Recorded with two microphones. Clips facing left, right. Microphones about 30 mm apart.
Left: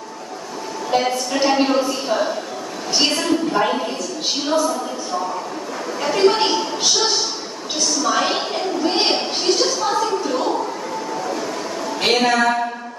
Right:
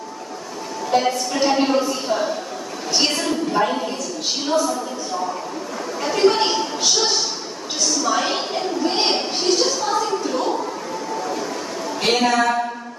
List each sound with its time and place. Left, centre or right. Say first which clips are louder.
0.9 s a woman's voice: even; centre
5.9 s speech: left 1 dB; centre
8.0 s a woman's voice: left 3 dB; centre
9.9 s a sound: left 1 dB; centre
12.0 s a woman's voice: left 1 dB; centre